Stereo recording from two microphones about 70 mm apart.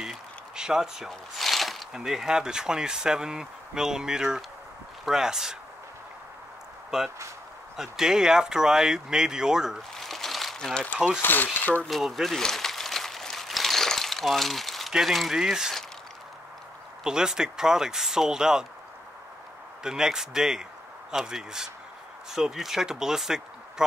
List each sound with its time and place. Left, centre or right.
0.0 s zipper: centre
2.0 s speech: centre
7.7 s speech: centre
9.9 s crumpling: centre
11.0 s speech: centre
11.4 s speech: left
11.9 s a sound: centre
17.0 s speech: centre
19.8 s speech: centre